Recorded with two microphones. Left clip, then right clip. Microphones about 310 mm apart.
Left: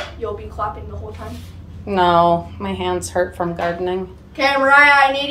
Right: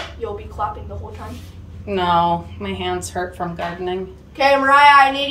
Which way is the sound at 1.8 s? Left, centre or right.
Centre.